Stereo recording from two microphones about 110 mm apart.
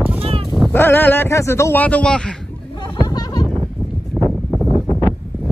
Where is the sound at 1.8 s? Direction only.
10° left (ahead or behind).